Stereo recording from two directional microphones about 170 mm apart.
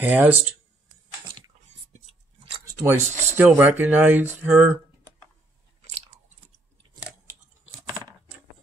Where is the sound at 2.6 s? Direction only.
15° right (ahead or behind).